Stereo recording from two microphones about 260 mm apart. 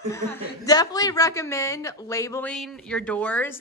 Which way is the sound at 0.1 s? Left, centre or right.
Centre.